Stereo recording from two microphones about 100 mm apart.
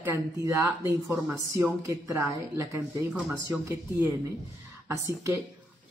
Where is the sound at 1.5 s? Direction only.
30° right (ahead or behind).